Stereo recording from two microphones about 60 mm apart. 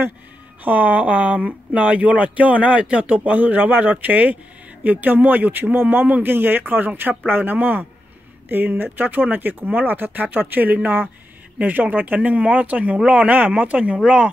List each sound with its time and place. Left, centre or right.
0.7 s speech: right